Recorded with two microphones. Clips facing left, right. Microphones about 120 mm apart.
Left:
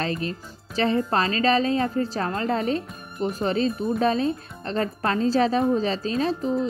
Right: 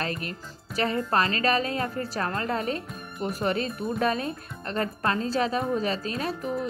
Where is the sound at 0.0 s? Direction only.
30° left (ahead or behind).